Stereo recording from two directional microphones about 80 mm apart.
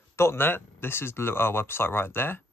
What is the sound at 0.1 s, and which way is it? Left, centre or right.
Speech, left.